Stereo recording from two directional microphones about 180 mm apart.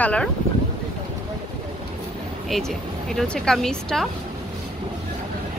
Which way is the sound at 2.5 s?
Centre (ahead or behind).